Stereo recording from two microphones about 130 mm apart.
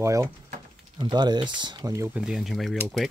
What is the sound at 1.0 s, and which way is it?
Speech, 35° right (ahead or behind).